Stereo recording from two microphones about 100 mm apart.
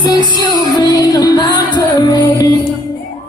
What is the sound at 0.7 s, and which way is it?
Music, 40° left (ahead or behind).